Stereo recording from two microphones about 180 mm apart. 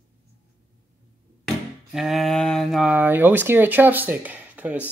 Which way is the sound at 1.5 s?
Centre (ahead or behind).